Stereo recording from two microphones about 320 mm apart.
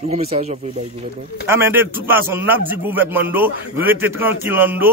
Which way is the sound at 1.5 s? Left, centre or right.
Centre.